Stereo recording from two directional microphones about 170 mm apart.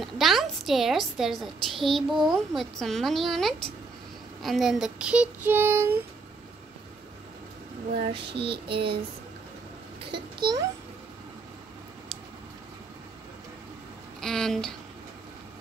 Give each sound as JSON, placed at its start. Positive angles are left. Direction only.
{"t": 0.0, "sound": "a woman's voice", "side_deg": 0}
{"t": 8.0, "sound": "child singing", "side_deg": -30}
{"t": 10.1, "sound": "a child's voice", "side_deg": -25}
{"t": 14.2, "sound": "a woman's voice", "side_deg": 5}